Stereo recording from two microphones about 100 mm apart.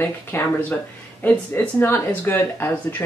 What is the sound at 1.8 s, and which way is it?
Speech, 20° left (ahead or behind).